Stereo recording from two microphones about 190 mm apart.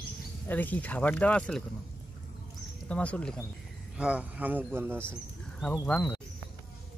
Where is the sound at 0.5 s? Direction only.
10° left (ahead or behind).